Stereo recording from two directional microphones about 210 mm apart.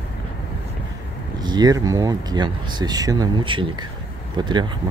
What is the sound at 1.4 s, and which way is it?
Speech, 20° right (ahead or behind).